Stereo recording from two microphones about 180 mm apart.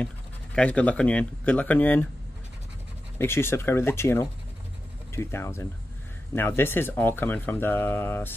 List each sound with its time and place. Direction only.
0.6 s speech: 5° left (ahead or behind)
3.2 s speech: 15° left (ahead or behind)